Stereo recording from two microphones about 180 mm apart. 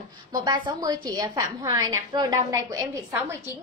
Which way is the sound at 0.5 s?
20° right (ahead or behind).